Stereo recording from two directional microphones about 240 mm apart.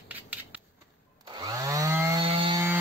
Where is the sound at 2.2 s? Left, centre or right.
Right.